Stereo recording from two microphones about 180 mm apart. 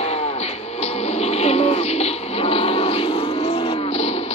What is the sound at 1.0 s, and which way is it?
Printer, 35° left (ahead or behind).